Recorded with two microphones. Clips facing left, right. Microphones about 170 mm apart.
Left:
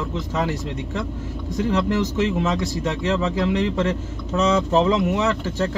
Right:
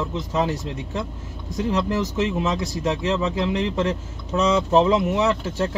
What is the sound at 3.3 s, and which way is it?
Speech, 25° right (ahead or behind).